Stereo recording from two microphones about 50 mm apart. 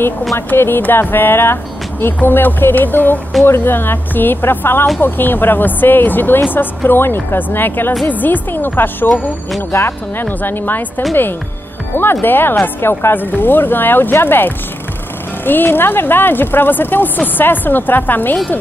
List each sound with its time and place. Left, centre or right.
0.6 s speech: left
2.1 s speech: left
9.7 s speech: left
10.2 s speech: left
11.9 s speech: left